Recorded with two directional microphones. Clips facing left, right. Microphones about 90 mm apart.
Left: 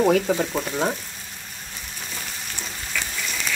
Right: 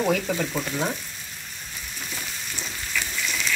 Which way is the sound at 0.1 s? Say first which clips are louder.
Left 4 dB; 35° left (ahead or behind).